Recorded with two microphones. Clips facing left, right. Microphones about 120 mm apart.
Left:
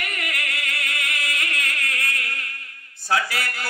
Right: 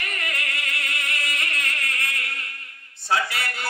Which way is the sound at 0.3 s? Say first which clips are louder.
Left 1 dB; 25° right (ahead or behind).